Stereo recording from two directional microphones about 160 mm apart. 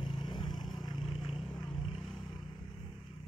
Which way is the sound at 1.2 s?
Centre (ahead or behind).